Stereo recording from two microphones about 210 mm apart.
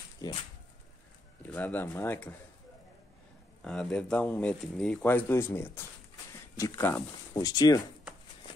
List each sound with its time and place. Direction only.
0.2 s speech: 15° left (ahead or behind)
1.4 s speech: 10° left (ahead or behind)
3.6 s speech: centre (ahead or behind)